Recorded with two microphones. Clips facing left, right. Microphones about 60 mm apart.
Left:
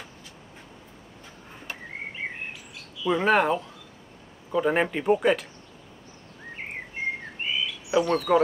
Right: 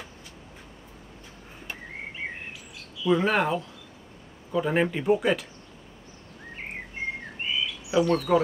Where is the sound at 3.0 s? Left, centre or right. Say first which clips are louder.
Right 1 dB; centre.